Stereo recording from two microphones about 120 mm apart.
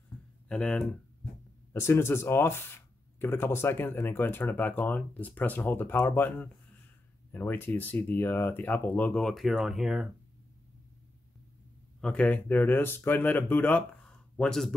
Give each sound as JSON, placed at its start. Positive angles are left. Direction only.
{"t": 0.5, "sound": "speech", "side_deg": 5}
{"t": 1.7, "sound": "speech", "side_deg": 20}
{"t": 9.2, "sound": "speech", "side_deg": 0}
{"t": 12.0, "sound": "speech", "side_deg": 5}